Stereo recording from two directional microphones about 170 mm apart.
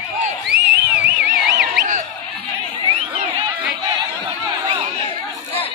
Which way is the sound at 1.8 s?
50° right (ahead or behind).